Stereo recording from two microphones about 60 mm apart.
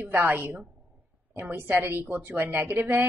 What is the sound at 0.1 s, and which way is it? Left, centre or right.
Speech, right.